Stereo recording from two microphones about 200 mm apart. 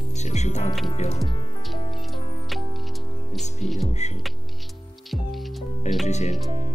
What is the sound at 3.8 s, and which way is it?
Speech, 35° left (ahead or behind).